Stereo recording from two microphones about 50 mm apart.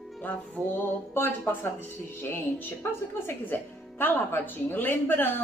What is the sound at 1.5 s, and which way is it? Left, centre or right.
Speech, left.